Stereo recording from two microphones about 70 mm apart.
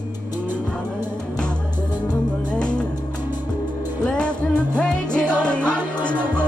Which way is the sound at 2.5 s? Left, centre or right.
Centre.